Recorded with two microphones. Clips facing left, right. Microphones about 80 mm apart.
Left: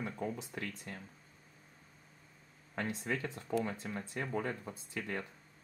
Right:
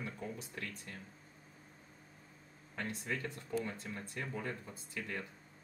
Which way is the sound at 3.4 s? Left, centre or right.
Left.